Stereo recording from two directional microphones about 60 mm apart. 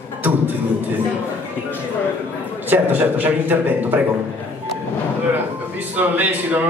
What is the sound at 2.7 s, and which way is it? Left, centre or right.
A man's voice, right.